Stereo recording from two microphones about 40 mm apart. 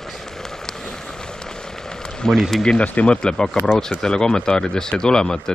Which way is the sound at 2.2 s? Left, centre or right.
Centre.